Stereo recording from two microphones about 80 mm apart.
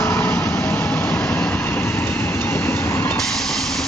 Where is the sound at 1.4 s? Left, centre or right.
Left.